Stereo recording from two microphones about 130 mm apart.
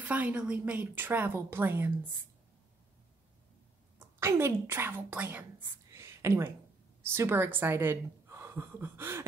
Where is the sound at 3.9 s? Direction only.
20° right (ahead or behind).